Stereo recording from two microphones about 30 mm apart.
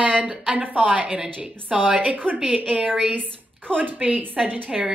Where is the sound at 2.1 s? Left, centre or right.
Right.